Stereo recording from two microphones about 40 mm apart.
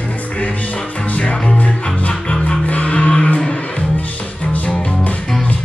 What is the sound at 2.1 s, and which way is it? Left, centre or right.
Music, left.